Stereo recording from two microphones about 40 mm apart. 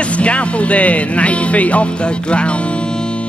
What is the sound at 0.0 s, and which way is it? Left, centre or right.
Music, left.